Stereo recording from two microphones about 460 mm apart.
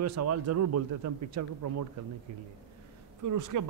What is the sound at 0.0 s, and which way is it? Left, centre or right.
Speech, right.